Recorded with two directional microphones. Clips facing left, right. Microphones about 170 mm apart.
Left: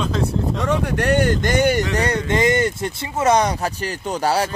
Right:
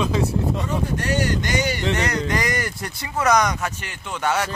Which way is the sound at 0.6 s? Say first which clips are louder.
Left 5 dB; 75° left (ahead or behind).